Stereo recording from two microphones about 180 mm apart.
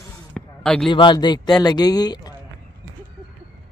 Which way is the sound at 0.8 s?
25° left (ahead or behind).